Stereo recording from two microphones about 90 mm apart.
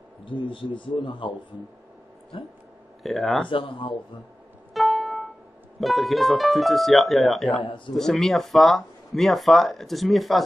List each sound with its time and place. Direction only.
0.2 s a man's voice: 70° left (ahead or behind)
3.0 s speech: centre (ahead or behind)
3.4 s a man's voice: 70° left (ahead or behind)
4.7 s music: centre (ahead or behind)
5.8 s speech: centre (ahead or behind)
7.6 s a man's voice: 70° left (ahead or behind)
7.9 s speech: 5° left (ahead or behind)